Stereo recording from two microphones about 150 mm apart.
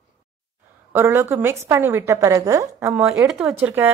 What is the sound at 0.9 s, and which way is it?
Speech, 15° right (ahead or behind).